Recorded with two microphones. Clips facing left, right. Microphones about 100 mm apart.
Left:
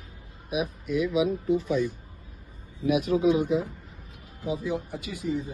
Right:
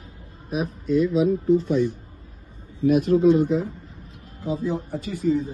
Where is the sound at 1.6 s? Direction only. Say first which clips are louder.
Right 4 dB; 50° right (ahead or behind).